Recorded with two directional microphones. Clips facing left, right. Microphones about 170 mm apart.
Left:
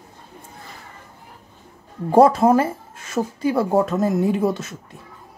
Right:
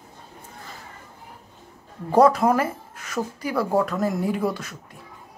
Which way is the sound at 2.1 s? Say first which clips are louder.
Left 3 dB; 25° left (ahead or behind).